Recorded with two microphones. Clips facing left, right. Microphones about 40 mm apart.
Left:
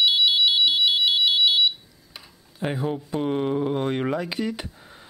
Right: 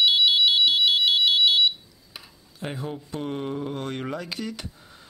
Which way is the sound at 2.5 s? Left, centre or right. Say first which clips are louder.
Left 6 dB; centre.